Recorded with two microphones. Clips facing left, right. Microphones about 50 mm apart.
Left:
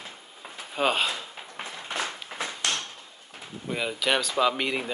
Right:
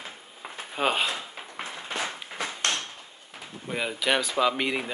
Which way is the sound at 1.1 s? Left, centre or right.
Right.